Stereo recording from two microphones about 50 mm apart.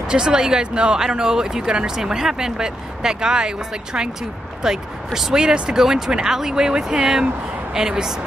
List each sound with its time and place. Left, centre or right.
0.1 s speech: centre